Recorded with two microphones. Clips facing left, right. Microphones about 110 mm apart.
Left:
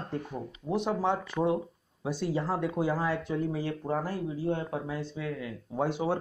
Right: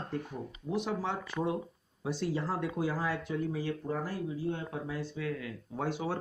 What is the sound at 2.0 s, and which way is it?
Speech, 15° left (ahead or behind).